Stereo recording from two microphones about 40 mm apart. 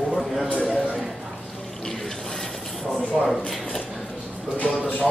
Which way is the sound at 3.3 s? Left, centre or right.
Centre.